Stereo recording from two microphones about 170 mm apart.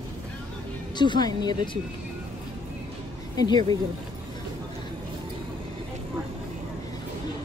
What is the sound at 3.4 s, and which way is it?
Speech, 25° left (ahead or behind).